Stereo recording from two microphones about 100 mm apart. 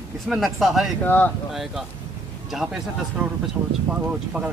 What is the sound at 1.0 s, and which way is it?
Speech, 20° left (ahead or behind).